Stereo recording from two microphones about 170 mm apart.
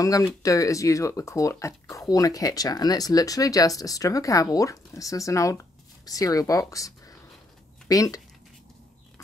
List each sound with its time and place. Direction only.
0.0 s speech: 20° left (ahead or behind)